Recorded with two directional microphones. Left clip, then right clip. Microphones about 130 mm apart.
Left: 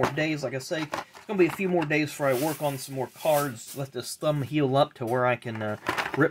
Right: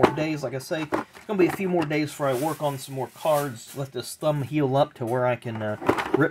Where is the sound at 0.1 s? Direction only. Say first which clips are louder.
Right 1 dB; 10° left (ahead or behind).